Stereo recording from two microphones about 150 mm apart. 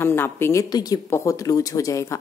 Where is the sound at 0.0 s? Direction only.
15° left (ahead or behind).